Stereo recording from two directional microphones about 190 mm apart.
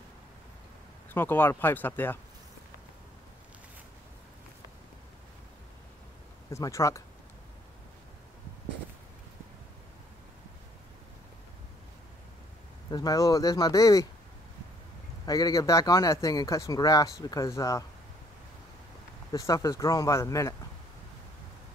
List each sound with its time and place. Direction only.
1.1 s speech: 10° left (ahead or behind)
6.5 s speech: 15° left (ahead or behind)
12.9 s speech: 20° left (ahead or behind)
15.2 s speech: 20° left (ahead or behind)
19.3 s speech: 15° left (ahead or behind)